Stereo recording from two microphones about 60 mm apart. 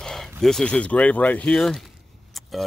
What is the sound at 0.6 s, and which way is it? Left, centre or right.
Speech, centre.